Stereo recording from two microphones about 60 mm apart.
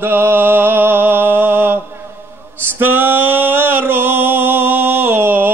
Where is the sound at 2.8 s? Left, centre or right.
Right.